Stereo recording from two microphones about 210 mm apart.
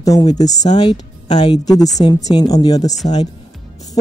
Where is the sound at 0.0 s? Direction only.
15° left (ahead or behind).